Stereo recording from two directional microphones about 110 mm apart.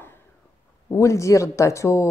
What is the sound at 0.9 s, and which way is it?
A woman's voice, 25° left (ahead or behind).